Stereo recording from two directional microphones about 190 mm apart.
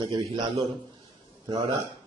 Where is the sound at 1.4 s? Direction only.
25° right (ahead or behind).